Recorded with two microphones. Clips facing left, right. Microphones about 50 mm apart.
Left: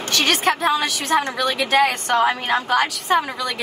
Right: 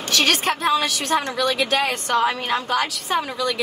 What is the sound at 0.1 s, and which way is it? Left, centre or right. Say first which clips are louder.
A woman's voice: left 1 dB; centre.